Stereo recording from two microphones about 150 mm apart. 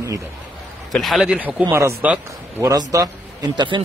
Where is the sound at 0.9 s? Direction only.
5° right (ahead or behind).